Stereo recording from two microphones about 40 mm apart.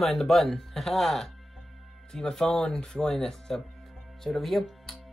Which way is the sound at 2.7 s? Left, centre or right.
Centre.